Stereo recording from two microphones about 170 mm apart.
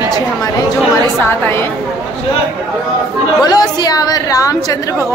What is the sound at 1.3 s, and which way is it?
Speech, 15° left (ahead or behind).